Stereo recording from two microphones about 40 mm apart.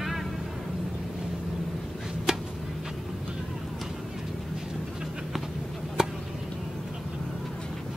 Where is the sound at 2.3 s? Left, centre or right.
Centre.